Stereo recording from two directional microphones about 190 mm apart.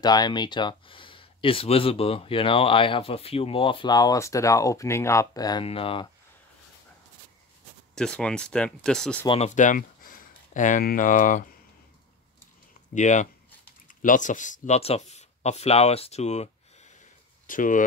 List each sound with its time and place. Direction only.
0.0 s speech: 20° left (ahead or behind)
7.9 s speech: 5° left (ahead or behind)
9.3 s speech: 35° left (ahead or behind)
12.9 s speech: 40° left (ahead or behind)